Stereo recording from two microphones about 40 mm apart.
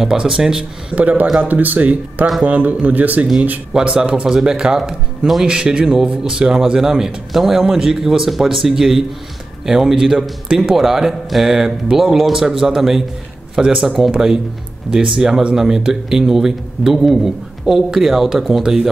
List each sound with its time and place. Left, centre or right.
0.2 s speech: centre
0.9 s a man's voice: right
3.7 s speech: right
4.3 s speech: centre
5.5 s a man's voice: right
13.6 s speech: centre